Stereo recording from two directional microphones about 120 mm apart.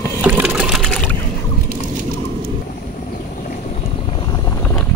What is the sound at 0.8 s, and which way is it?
Boat, 5° left (ahead or behind).